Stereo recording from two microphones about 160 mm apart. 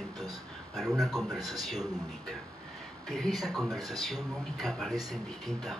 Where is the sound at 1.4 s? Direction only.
25° right (ahead or behind).